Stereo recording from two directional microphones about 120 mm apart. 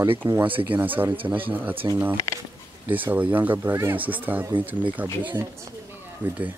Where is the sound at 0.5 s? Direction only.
45° right (ahead or behind).